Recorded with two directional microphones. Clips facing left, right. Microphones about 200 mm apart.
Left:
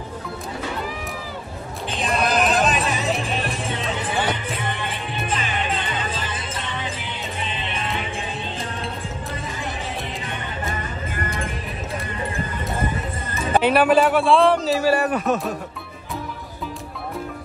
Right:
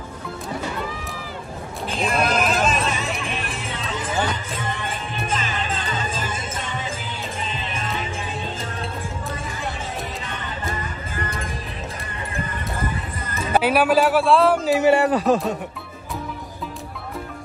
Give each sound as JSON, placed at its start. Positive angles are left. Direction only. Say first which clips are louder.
{"t": 2.0, "sound": "a sound", "louder": "even", "side_deg": 0}
{"t": 7.5, "sound": "music", "louder": "left 1 dB", "side_deg": -40}
{"t": 13.5, "sound": "a man's voice", "louder": "left 1 dB", "side_deg": -10}